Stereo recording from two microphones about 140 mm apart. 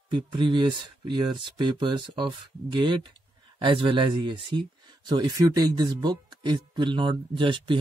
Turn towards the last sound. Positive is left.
turn(degrees=-35)  # may be behind; listen again after turning